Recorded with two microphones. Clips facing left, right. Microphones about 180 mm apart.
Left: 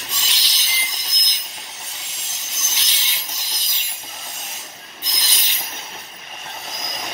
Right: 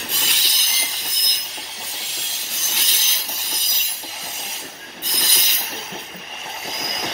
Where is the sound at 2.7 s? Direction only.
45° right (ahead or behind).